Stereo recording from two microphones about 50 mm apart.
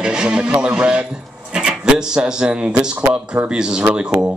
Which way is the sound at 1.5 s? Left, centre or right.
Centre.